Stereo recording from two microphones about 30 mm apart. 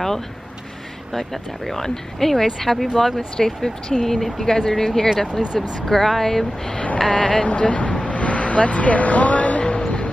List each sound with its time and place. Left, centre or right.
1.1 s speech: centre
3.3 s speech: centre
3.9 s speech: centre
7.1 s speech: left
7.5 s speech: left
8.1 s vehicle: left
9.8 s music: left